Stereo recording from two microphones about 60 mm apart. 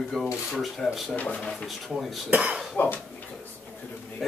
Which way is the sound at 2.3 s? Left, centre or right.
Right.